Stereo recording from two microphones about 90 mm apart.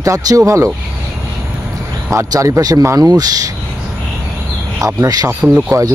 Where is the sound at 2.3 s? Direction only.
40° right (ahead or behind).